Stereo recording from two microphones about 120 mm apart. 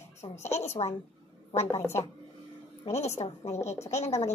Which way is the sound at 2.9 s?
65° left (ahead or behind).